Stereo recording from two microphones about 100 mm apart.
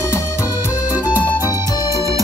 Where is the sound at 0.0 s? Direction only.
25° left (ahead or behind).